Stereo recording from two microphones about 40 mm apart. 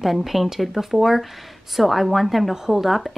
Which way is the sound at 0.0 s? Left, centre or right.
Centre.